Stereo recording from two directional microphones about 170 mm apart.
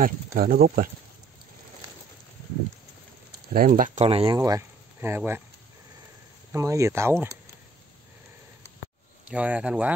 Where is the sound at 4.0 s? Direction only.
35° right (ahead or behind).